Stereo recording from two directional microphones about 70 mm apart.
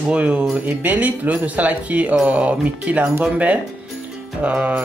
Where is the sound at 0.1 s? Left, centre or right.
Right.